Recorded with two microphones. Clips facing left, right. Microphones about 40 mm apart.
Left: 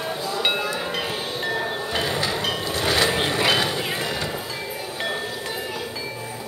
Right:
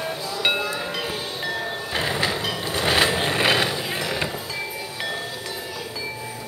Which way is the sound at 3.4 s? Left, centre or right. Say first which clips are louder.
Right 1 dB; centre.